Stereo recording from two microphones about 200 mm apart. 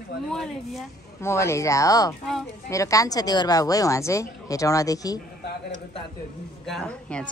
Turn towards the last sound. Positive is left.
turn(degrees=5)  # may be behind; listen again after turning